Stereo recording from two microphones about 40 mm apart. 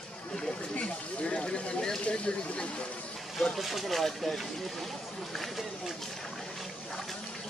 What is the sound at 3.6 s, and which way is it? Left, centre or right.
Speech, centre.